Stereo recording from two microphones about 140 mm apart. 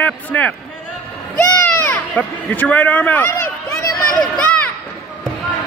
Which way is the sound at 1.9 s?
10° left (ahead or behind).